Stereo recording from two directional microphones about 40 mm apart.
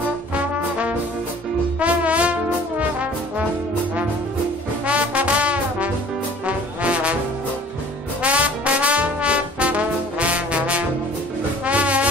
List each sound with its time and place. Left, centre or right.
0.3 s trombone: right
1.8 s music: right
4.8 s music: right
6.4 s trombone: right
8.2 s trombone: right
11.6 s music: right